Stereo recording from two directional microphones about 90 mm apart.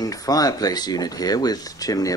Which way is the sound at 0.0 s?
40° left (ahead or behind).